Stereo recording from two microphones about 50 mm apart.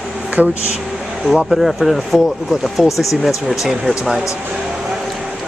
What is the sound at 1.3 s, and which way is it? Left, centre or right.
Speech, centre.